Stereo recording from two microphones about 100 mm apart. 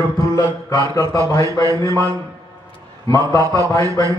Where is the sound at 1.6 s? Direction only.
35° right (ahead or behind).